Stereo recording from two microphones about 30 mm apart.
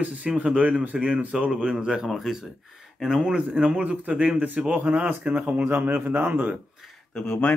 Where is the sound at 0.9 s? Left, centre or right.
Right.